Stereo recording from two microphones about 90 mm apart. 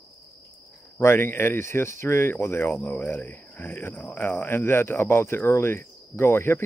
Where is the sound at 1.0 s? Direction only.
25° left (ahead or behind).